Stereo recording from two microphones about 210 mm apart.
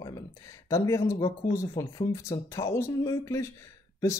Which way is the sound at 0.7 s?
15° left (ahead or behind).